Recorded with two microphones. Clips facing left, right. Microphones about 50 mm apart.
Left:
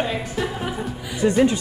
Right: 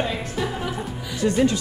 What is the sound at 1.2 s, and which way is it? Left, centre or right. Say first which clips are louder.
Speech: left 3 dB; left.